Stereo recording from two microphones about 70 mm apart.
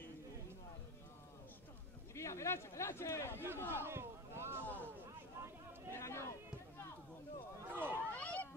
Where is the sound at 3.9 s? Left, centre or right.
Right.